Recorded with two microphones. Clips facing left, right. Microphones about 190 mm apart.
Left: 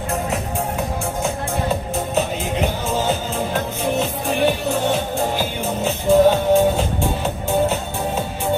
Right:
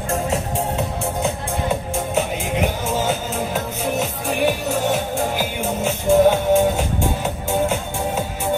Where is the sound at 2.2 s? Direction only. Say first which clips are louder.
Even; 10° right (ahead or behind).